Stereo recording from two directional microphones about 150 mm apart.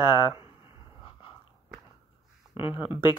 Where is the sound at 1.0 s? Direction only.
35° left (ahead or behind).